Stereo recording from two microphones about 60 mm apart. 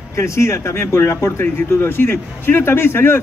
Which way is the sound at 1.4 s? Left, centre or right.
Left.